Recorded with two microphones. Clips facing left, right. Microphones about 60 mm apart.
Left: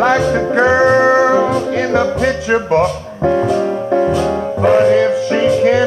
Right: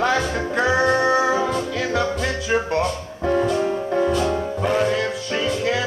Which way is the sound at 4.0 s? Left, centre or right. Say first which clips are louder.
Left 4 dB; centre.